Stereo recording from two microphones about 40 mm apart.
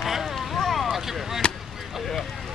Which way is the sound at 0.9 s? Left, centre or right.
Centre.